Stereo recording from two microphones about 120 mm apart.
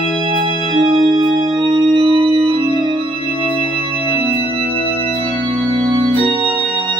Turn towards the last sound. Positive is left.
turn(degrees=-50)  # may be behind; listen again after turning